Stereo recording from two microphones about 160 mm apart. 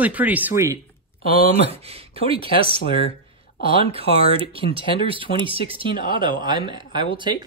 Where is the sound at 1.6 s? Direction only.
40° right (ahead or behind).